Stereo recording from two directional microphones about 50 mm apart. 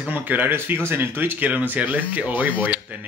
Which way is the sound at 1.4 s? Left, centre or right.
Right.